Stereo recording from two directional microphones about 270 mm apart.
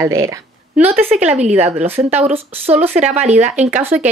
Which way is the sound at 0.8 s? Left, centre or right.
Right.